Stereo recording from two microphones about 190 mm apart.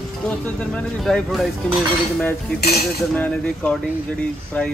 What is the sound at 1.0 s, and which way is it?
Speech, centre (ahead or behind).